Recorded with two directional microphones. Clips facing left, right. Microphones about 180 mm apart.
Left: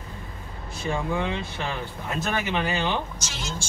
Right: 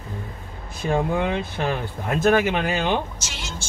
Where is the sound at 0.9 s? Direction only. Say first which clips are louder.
Right 6 dB; 50° right (ahead or behind).